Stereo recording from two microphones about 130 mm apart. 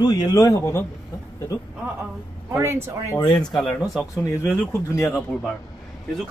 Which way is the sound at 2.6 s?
20° right (ahead or behind).